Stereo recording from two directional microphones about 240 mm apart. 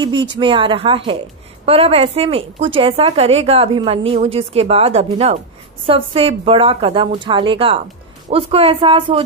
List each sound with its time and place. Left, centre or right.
0.0 s a woman's voice: centre